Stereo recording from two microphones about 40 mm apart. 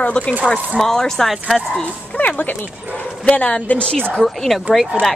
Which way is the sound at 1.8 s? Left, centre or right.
Left.